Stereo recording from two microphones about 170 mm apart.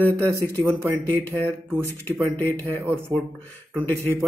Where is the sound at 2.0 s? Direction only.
10° left (ahead or behind).